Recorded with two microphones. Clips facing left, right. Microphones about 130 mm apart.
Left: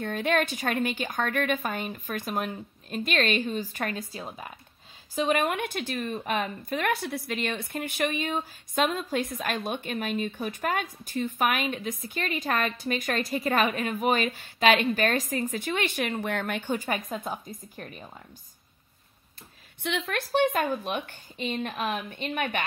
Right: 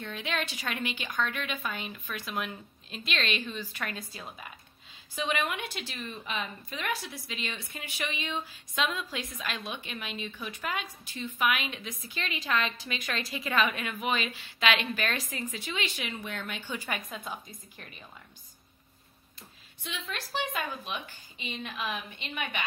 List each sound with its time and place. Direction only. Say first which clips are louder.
0.0 s a woman's voice: left 8 dB; 50° left (ahead or behind)
19.8 s speech: left 9 dB; 65° left (ahead or behind)
20.3 s a woman's voice: left 10 dB; 50° left (ahead or behind)